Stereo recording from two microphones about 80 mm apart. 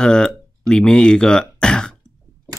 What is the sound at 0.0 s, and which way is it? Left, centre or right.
Throat clearing, centre.